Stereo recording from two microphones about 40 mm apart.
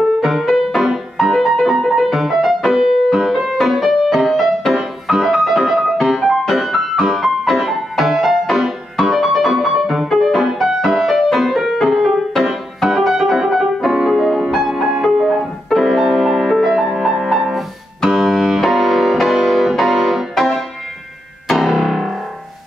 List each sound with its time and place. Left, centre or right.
0.2 s music: centre
12.9 s piano: centre
14.1 s music: centre
14.4 s music: centre
15.7 s music: centre
20.3 s music: centre
21.5 s keyboard: centre